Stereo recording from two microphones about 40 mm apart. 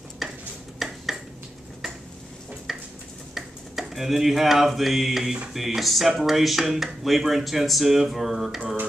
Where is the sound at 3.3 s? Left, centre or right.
Centre.